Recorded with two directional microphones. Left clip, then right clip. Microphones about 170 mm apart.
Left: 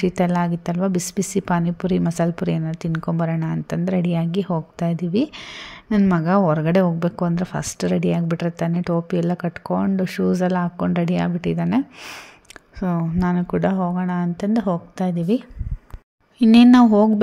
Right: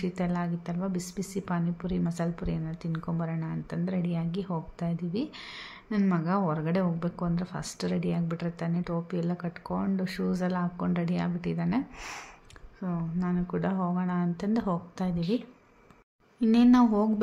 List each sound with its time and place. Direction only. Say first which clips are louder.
0.0 s a woman's voice: left 12 dB; 45° left (ahead or behind)
12.8 s speech: left 11 dB; 50° left (ahead or behind); by 15.4 s 30° left (ahead or behind)
16.5 s speech: left 10 dB; 40° left (ahead or behind)